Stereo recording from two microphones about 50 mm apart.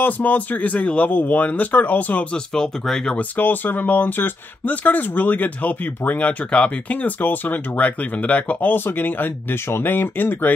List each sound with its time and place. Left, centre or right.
0.0 s speech: left
2.3 s speech: centre
3.2 s speech: left